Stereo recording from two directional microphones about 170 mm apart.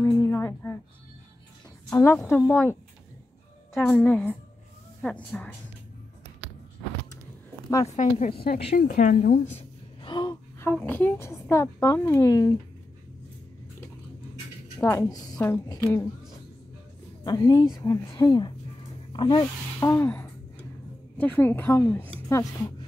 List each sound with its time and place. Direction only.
0.0 s a sound: 15° left (ahead or behind)
1.9 s a woman's voice: 20° left (ahead or behind)
7.8 s a woman's voice: 45° left (ahead or behind)
8.7 s a woman's voice: 55° left (ahead or behind)
9.6 s a sound: 25° left (ahead or behind)
10.6 s a woman's voice: 10° left (ahead or behind)
14.8 s a woman's voice: 15° left (ahead or behind)
17.2 s speech: 25° left (ahead or behind)
19.9 s a woman's voice: 10° left (ahead or behind)